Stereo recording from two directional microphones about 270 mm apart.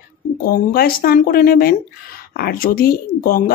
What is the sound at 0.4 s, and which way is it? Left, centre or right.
Speech, left.